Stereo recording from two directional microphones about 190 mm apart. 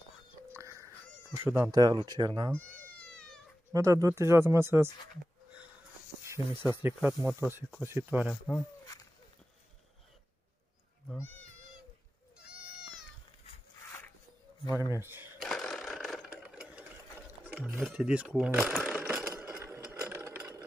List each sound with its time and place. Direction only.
0.5 s a sound: 15° right (ahead or behind)
1.3 s speech: 10° right (ahead or behind)
2.5 s cat: 5° left (ahead or behind)
3.7 s speech: 15° right (ahead or behind)
6.2 s speech: 15° right (ahead or behind)
11.1 s cat: 10° left (ahead or behind)
14.9 s speech: 10° right (ahead or behind)
15.3 s sewing machine: centre (ahead or behind)
17.5 s speech: 10° right (ahead or behind)
17.8 s sewing machine: 5° right (ahead or behind)